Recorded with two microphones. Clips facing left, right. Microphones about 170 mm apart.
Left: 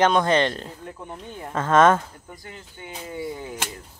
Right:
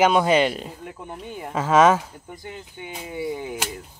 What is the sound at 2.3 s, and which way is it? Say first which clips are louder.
Speech: right 6 dB; 20° right (ahead or behind).